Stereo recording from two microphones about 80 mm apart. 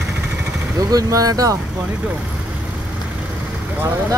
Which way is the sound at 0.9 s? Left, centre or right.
Right.